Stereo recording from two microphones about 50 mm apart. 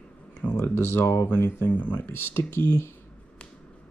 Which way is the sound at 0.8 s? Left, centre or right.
Left.